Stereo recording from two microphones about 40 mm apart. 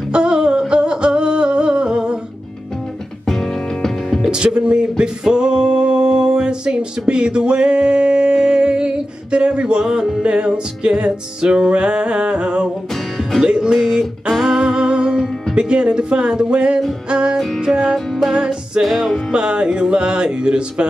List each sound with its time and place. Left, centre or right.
0.1 s a sound: right
3.3 s music: centre
4.3 s music: right
13.7 s a sound: centre
14.4 s music: centre
18.8 s music: centre
19.3 s music: right